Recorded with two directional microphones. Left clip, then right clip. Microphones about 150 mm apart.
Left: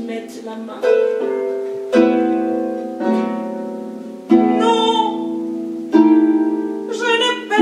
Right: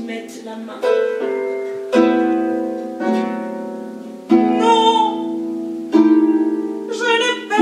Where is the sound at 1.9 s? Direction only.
10° left (ahead or behind).